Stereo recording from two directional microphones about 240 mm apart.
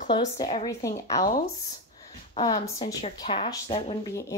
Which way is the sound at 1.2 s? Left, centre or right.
Left.